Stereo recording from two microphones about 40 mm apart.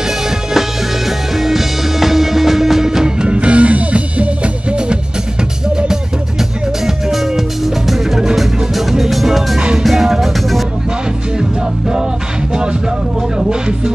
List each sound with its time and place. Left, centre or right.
1.3 s music: centre
3.3 s music: right
7.1 s music: centre